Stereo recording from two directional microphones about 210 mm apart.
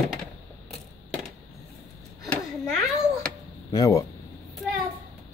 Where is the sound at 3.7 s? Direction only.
15° left (ahead or behind).